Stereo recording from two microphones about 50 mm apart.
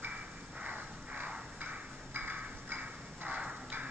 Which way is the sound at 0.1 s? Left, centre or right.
Right.